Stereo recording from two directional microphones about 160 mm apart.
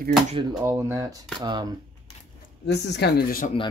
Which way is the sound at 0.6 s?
20° right (ahead or behind).